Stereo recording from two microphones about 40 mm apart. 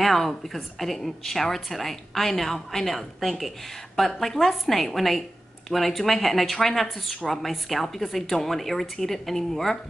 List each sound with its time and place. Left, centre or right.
0.0 s a woman's voice: centre